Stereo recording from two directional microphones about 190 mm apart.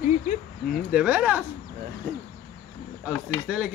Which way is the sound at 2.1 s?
55° right (ahead or behind).